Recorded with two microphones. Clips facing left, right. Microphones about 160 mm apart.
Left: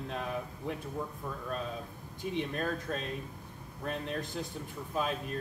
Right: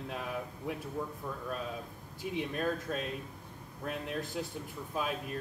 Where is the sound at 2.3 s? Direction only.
5° right (ahead or behind).